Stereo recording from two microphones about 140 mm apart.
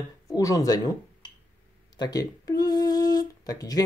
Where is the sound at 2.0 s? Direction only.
25° left (ahead or behind).